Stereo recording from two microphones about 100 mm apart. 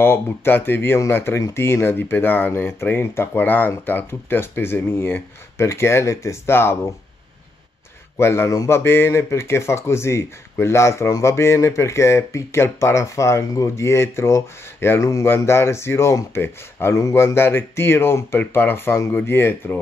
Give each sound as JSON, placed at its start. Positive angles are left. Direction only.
{"t": 0.0, "sound": "speech", "side_deg": 25}
{"t": 8.2, "sound": "speech", "side_deg": 25}